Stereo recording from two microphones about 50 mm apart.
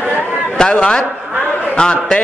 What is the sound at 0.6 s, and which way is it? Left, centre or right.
Speech, centre.